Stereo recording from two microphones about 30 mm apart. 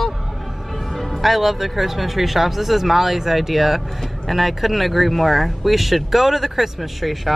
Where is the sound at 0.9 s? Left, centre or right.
Centre.